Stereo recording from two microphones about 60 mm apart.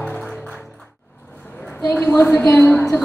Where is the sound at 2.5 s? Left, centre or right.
Left.